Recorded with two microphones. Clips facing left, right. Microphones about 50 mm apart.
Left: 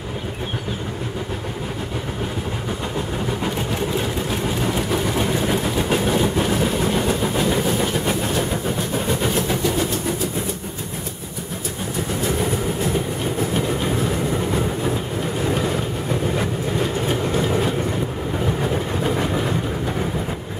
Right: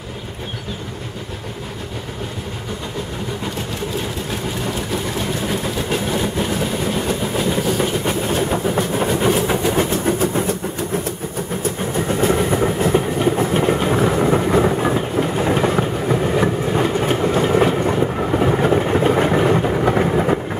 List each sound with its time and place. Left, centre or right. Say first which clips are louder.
5.5 s train: left 1 dB; centre
8.3 s train: right 3 dB; right
9.5 s train: right 3 dB; right
9.8 s train: right 5 dB; right
12.8 s train: right 6 dB; right
15.4 s train: right 3 dB; right
18.4 s vehicle: right 7 dB; right
19.8 s vehicle: right 8 dB; right